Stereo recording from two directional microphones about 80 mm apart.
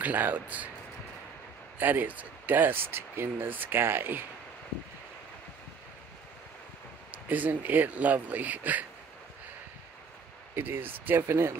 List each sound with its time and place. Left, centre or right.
0.0 s speech: right
1.8 s speech: right
7.1 s speech: centre
10.5 s speech: right